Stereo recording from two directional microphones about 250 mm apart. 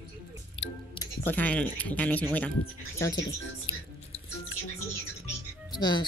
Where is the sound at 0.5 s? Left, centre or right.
Left.